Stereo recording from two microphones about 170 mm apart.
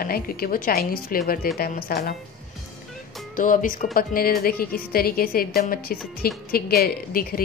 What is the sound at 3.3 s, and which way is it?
A woman's voice, 50° left (ahead or behind).